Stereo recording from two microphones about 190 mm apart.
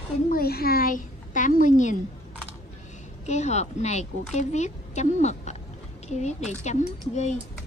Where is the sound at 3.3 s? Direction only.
35° left (ahead or behind).